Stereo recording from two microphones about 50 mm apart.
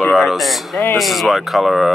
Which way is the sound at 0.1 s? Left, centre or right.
Centre.